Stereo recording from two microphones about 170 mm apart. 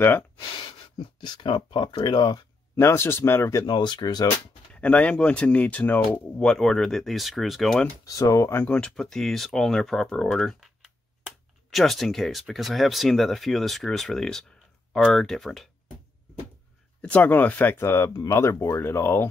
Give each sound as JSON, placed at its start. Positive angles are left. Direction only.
{"t": 0.9, "sound": "speech", "side_deg": 25}
{"t": 4.7, "sound": "speech", "side_deg": 10}
{"t": 8.0, "sound": "speech", "side_deg": 20}
{"t": 17.0, "sound": "speech", "side_deg": 10}